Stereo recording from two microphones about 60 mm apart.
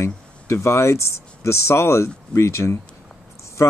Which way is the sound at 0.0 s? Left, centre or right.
Left.